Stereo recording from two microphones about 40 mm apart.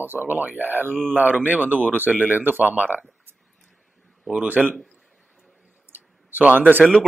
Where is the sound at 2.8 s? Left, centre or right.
Right.